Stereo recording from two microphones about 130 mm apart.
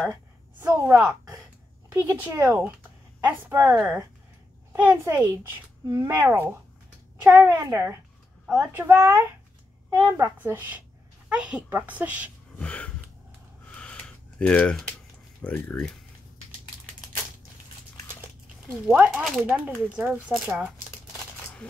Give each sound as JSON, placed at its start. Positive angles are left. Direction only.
{"t": 0.6, "sound": "a woman's voice", "side_deg": -20}
{"t": 4.7, "sound": "a woman's voice", "side_deg": -15}
{"t": 12.5, "sound": "speech", "side_deg": 10}
{"t": 13.7, "sound": "a sound", "side_deg": 5}
{"t": 15.4, "sound": "speech", "side_deg": 10}
{"t": 18.9, "sound": "a woman's voice", "side_deg": -5}